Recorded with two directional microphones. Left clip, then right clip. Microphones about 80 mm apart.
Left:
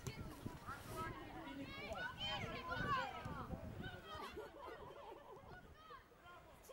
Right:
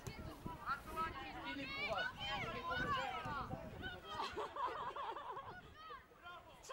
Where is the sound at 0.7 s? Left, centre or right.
Centre.